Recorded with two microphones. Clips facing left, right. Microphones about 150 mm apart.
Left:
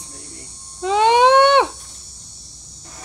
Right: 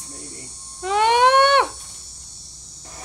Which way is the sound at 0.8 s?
25° left (ahead or behind).